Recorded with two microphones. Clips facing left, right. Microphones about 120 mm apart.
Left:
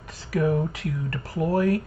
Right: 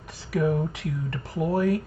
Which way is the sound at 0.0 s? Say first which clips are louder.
Left 1 dB; centre (ahead or behind).